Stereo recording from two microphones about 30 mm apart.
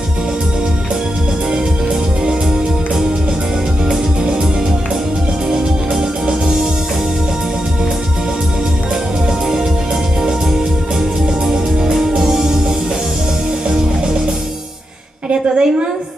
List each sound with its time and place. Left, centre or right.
1.5 s music: right
5.5 s music: right
11.4 s music: centre
15.2 s a sound: right